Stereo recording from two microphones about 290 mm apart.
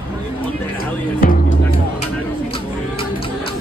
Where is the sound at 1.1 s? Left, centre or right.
Left.